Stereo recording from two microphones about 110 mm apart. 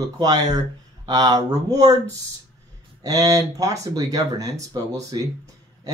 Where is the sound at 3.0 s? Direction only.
35° right (ahead or behind).